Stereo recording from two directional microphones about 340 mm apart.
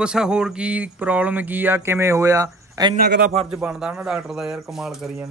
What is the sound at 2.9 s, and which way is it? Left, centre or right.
Speech, right.